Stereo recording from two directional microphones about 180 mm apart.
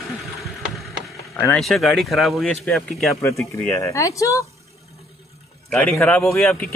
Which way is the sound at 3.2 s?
15° left (ahead or behind).